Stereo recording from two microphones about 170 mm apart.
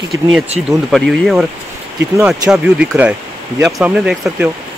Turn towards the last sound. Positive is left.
turn(degrees=-5)  # may be behind; listen again after turning